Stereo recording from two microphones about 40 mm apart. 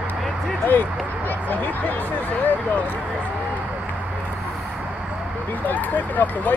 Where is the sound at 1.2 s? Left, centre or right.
Left.